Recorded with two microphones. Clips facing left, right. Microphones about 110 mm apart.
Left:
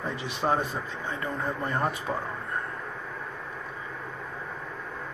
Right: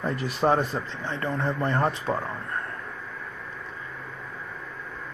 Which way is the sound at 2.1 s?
35° right (ahead or behind).